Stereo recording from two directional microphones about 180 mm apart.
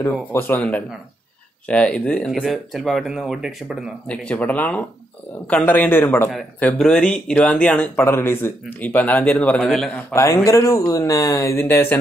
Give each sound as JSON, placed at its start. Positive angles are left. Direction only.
{"t": 0.0, "sound": "speech", "side_deg": 15}
{"t": 10.1, "sound": "speech", "side_deg": 15}